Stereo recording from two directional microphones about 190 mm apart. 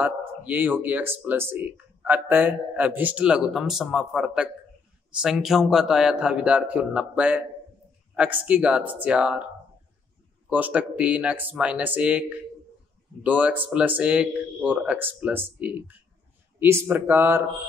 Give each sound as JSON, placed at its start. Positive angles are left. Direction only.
{"t": 0.0, "sound": "speech", "side_deg": -10}
{"t": 10.5, "sound": "speech", "side_deg": -5}